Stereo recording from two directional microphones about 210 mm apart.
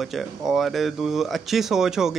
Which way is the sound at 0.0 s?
Centre (ahead or behind).